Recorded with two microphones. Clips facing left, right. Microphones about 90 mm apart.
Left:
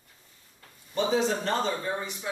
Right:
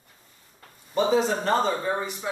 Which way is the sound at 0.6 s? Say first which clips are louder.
Right 4 dB; 35° right (ahead or behind).